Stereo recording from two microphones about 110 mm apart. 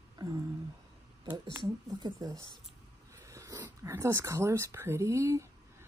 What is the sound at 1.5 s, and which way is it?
Speech, 30° right (ahead or behind).